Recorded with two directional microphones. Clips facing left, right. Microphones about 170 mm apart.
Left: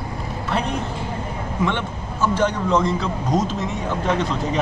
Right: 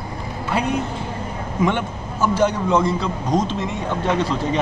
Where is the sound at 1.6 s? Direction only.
10° right (ahead or behind).